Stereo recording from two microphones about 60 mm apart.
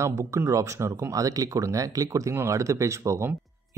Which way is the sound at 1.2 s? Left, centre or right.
Right.